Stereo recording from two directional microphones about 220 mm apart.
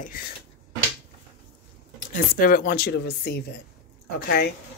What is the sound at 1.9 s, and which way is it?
Speech, 40° left (ahead or behind).